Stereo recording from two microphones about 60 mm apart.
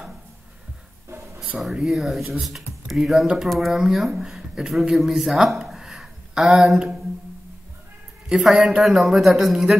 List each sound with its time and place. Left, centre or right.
1.6 s a man's voice: centre
8.5 s a man's voice: centre